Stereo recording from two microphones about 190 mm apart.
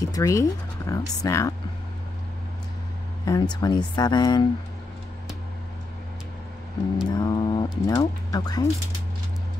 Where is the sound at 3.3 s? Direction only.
20° left (ahead or behind).